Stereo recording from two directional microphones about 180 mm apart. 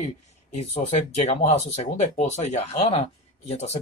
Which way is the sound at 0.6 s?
35° left (ahead or behind).